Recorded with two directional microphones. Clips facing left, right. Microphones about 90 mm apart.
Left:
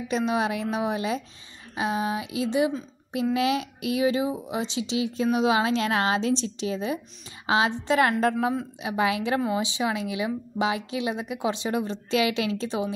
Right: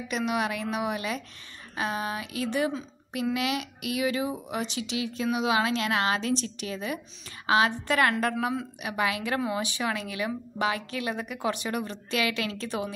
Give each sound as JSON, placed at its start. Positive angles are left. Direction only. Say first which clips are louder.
{"t": 0.1, "sound": "speech", "louder": "left 3 dB", "side_deg": 30}